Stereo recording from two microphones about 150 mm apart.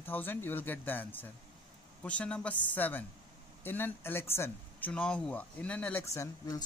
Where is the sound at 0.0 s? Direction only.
15° left (ahead or behind).